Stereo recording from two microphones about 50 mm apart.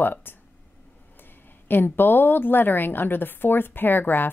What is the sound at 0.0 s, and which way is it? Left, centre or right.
Speech, left.